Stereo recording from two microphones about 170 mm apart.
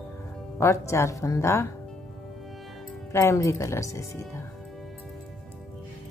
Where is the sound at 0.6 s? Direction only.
15° left (ahead or behind).